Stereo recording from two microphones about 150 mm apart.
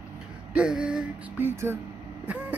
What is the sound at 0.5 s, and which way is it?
Music, 5° right (ahead or behind).